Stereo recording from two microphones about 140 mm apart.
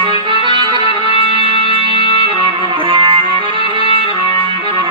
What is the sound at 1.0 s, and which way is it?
Music, 35° right (ahead or behind).